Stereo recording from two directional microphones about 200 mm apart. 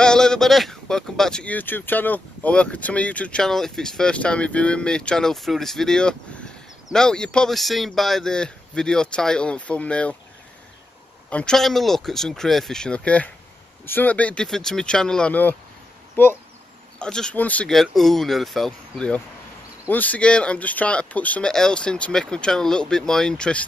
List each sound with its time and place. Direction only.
0.0 s speech: 5° left (ahead or behind)
11.2 s speech: 5° left (ahead or behind)